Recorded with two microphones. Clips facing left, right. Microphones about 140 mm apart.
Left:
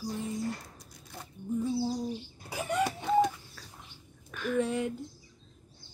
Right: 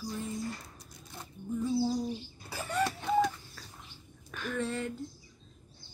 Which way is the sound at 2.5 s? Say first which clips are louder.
Left 2 dB; 15° left (ahead or behind).